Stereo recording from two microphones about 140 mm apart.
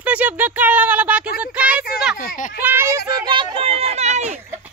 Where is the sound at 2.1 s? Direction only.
70° left (ahead or behind).